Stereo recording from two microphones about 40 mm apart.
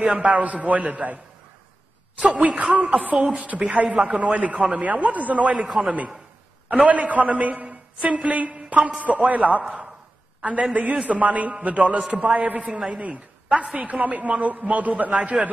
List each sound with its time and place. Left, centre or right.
0.2 s a man's voice: right
2.3 s a man's voice: right
13.6 s a man's voice: right
15.1 s a man's voice: right